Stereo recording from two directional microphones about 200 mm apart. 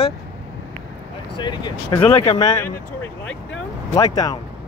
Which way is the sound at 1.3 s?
20° left (ahead or behind).